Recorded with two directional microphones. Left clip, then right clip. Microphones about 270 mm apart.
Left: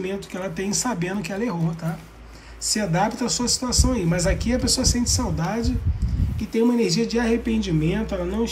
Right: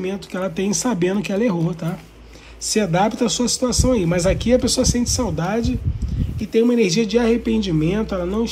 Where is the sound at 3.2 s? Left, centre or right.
Right.